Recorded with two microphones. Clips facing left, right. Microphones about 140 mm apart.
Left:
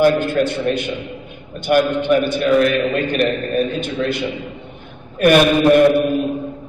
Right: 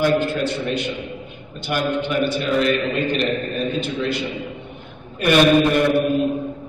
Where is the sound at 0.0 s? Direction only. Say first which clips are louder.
Left 4 dB; 50° left (ahead or behind).